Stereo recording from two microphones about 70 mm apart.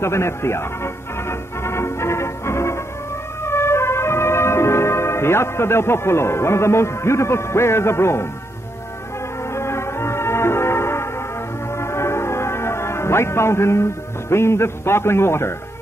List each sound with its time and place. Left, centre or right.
0.0 s music: left
9.5 s music: left
14.3 s a man's voice: left